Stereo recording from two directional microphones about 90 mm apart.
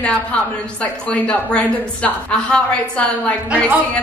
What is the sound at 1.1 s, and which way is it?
A woman's voice, 15° left (ahead or behind).